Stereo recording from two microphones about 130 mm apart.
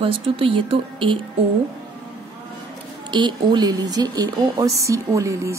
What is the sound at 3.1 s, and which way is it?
Speech, 35° right (ahead or behind).